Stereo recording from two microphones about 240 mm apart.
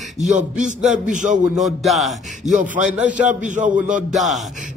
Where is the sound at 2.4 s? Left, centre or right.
Right.